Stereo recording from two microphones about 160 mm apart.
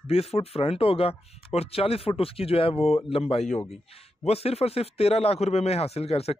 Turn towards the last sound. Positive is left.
turn(degrees=40)  # may be behind; listen again after turning